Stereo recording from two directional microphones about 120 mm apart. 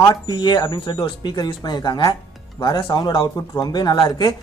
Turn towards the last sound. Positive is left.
turn(degrees=35)  # may be behind; listen again after turning